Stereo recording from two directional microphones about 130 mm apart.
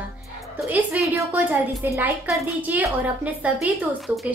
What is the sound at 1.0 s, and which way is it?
A woman's voice, 10° right (ahead or behind).